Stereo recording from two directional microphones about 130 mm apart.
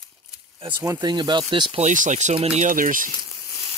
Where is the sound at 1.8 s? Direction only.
70° right (ahead or behind).